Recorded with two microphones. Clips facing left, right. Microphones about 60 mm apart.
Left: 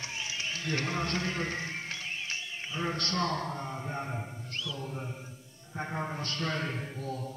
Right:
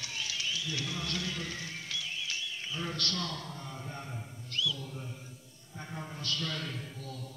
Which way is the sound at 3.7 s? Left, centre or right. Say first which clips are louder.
Left 6 dB; left.